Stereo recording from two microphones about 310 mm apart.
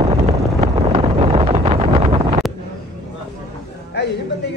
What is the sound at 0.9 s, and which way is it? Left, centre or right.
Wind noise, centre.